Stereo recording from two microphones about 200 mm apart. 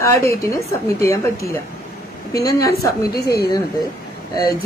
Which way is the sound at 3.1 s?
50° left (ahead or behind).